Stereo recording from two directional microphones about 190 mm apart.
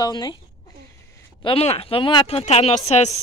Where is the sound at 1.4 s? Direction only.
30° left (ahead or behind).